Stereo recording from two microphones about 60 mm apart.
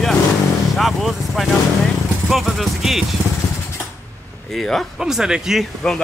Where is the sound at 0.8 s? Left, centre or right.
Centre.